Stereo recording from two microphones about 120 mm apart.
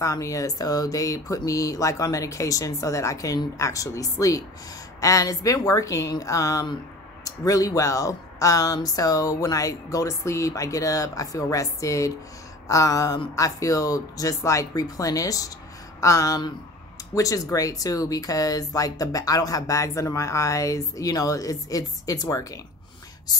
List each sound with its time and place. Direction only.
0.0 s speech: 25° left (ahead or behind)